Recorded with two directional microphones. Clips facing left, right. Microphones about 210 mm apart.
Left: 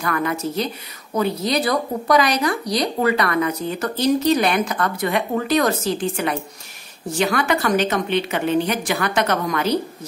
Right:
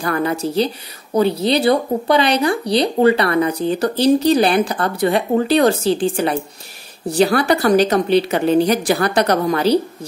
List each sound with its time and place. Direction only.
0.0 s speech: 30° right (ahead or behind)